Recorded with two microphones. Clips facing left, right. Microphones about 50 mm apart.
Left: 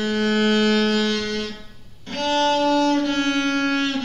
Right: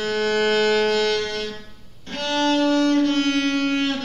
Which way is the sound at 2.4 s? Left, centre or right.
Centre.